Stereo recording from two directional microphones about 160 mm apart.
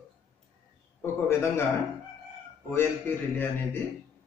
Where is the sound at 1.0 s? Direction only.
15° left (ahead or behind).